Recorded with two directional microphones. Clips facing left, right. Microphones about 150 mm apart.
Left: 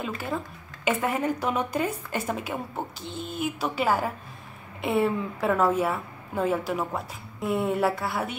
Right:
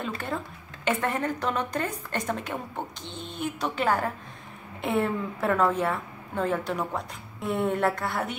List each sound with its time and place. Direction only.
0.8 s a woman's voice: 10° left (ahead or behind)